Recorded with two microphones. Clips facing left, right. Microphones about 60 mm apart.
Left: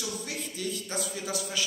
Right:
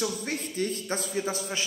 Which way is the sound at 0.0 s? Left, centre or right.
Right.